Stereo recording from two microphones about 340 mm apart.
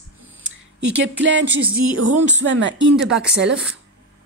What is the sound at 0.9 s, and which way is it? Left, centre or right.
Speech, right.